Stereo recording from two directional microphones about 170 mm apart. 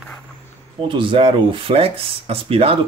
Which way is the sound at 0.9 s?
30° right (ahead or behind).